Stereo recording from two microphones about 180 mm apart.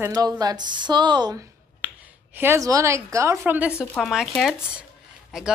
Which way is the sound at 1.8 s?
10° right (ahead or behind).